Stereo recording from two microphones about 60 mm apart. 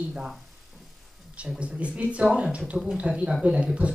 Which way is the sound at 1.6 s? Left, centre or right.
Centre.